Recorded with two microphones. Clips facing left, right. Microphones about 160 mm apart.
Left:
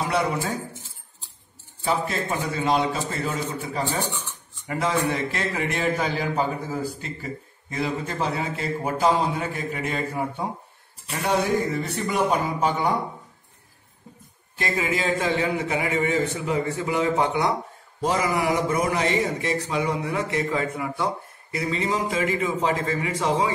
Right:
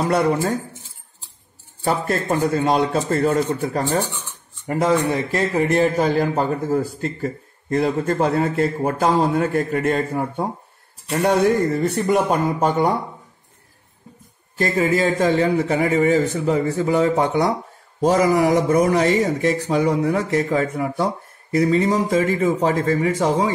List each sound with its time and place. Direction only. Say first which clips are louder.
0.1 s a man's voice: right 7 dB; 45° right (ahead or behind)
1.9 s a man's voice: right 5 dB; 50° right (ahead or behind)
4.6 s a man's voice: right 6 dB; 45° right (ahead or behind)
14.6 s a man's voice: right 7 dB; 40° right (ahead or behind)